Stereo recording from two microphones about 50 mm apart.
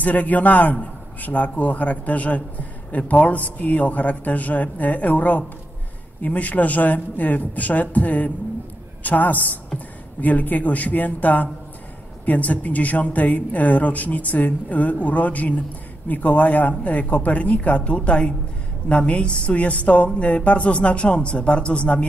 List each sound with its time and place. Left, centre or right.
0.0 s a man's voice: left